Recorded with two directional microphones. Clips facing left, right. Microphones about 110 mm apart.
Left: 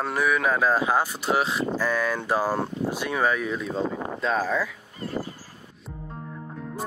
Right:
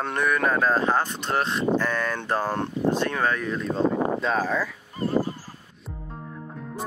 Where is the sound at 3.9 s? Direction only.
45° right (ahead or behind).